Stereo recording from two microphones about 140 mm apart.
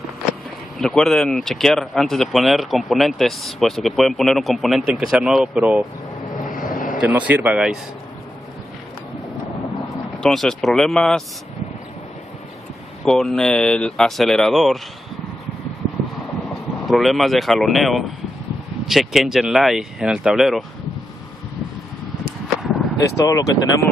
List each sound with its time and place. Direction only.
0.7 s speech: 5° left (ahead or behind)
6.5 s a sound: 75° left (ahead or behind)
7.0 s speech: 10° right (ahead or behind)
10.1 s speech: 5° left (ahead or behind)
13.0 s speech: 5° left (ahead or behind)
16.8 s speech: centre (ahead or behind)
22.9 s speech: 25° left (ahead or behind)